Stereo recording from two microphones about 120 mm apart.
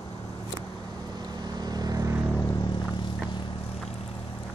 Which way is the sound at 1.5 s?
35° right (ahead or behind).